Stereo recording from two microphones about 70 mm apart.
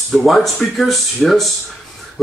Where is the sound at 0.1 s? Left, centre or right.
Centre.